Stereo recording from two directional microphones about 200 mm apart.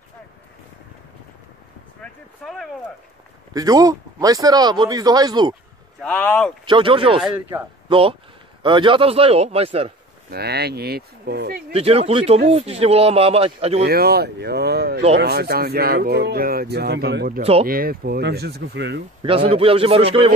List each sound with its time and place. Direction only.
2.0 s speech: 5° left (ahead or behind)
3.5 s speech: 20° right (ahead or behind)
5.9 s speech: 5° left (ahead or behind)
6.6 s a man's voice: 25° right (ahead or behind)
10.3 s speech: 55° right (ahead or behind)
11.7 s speech: 30° right (ahead or behind)
13.8 s speech: 50° right (ahead or behind)
19.2 s speech: 30° right (ahead or behind)